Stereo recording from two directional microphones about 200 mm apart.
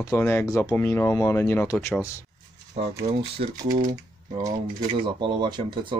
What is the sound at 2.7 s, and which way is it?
Speech, 35° right (ahead or behind).